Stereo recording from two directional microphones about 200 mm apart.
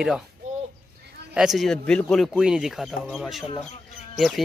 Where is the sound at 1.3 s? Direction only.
Centre (ahead or behind).